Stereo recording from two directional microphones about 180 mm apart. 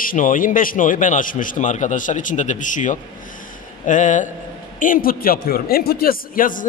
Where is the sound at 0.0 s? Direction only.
50° left (ahead or behind).